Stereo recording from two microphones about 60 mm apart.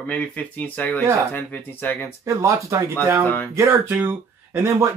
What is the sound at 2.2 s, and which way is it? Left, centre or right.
Speech, right.